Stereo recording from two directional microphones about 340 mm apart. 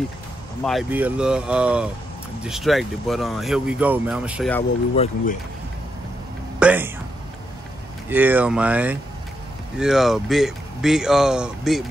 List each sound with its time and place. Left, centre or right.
0.7 s speech: centre
4.9 s speech: centre
6.6 s speech: centre
8.1 s speech: centre